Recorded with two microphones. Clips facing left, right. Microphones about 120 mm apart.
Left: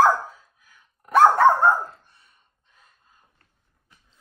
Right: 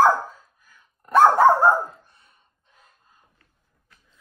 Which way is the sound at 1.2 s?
5° right (ahead or behind).